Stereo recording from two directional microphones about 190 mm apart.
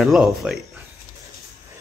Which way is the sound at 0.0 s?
Centre (ahead or behind).